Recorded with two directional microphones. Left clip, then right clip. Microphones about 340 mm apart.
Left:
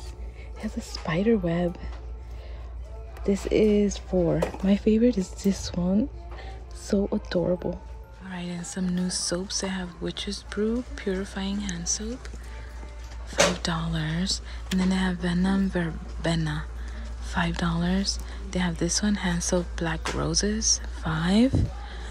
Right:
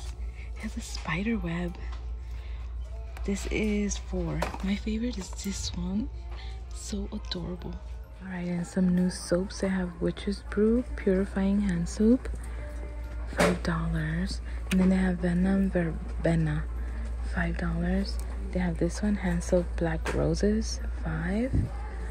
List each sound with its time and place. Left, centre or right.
0.7 s speech: centre
1.2 s speech: right
3.3 s speech: centre
6.9 s speech: centre
13.3 s speech: centre
20.5 s speech: centre
21.0 s speech: centre